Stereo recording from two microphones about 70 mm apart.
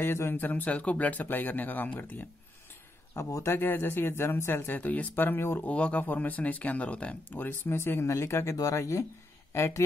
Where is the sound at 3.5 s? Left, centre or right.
Left.